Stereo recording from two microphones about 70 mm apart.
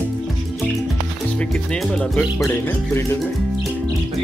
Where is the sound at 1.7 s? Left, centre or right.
Centre.